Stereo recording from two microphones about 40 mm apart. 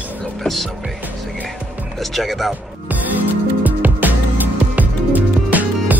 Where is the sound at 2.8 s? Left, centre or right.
Right.